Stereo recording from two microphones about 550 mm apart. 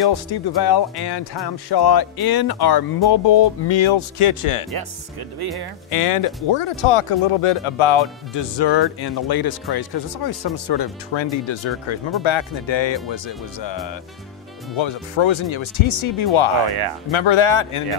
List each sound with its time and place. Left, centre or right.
0.1 s speech: left
5.9 s speech: left
14.8 s speech: left